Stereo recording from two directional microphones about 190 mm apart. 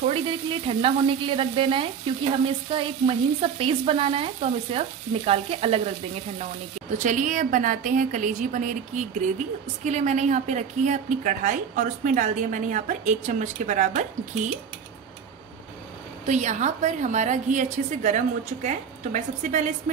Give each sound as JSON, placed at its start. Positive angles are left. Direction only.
{"t": 0.0, "sound": "frying", "side_deg": -30}
{"t": 7.0, "sound": "a woman's voice", "side_deg": -40}
{"t": 16.3, "sound": "a woman's voice", "side_deg": -40}